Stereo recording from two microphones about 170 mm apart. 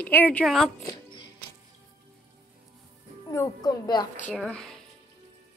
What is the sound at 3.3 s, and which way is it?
Speech, 20° left (ahead or behind).